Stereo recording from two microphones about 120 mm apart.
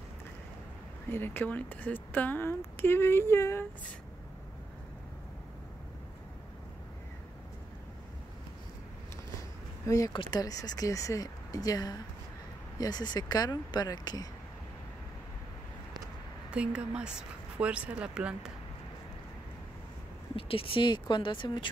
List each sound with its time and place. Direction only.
1.1 s speech: 15° left (ahead or behind)
9.8 s speech: 30° left (ahead or behind)
16.4 s speech: 10° right (ahead or behind)
20.3 s speech: 50° left (ahead or behind)